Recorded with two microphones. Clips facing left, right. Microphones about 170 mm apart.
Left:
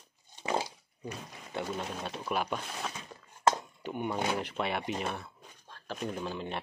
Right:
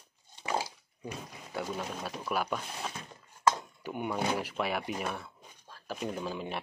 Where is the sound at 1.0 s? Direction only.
5° right (ahead or behind).